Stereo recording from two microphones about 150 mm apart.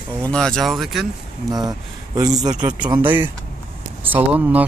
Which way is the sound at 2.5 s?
10° right (ahead or behind).